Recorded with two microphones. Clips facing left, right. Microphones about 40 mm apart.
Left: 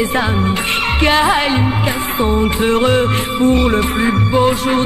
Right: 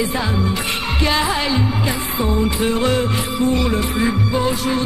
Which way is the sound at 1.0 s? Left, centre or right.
Left.